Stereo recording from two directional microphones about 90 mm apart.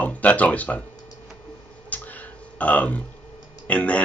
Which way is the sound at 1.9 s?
15° left (ahead or behind).